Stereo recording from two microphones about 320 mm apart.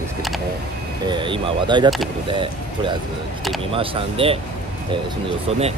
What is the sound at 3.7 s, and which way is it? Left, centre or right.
Speech, centre.